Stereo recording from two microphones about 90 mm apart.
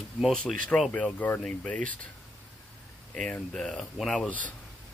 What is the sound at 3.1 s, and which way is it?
Speech, 10° left (ahead or behind).